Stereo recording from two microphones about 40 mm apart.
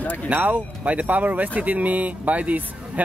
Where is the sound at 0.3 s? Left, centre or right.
Right.